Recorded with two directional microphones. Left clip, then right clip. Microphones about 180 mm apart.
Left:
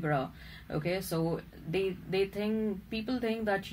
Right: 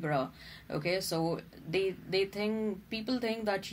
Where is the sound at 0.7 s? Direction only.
25° right (ahead or behind).